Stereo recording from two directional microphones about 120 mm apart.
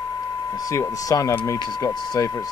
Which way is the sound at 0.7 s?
30° left (ahead or behind).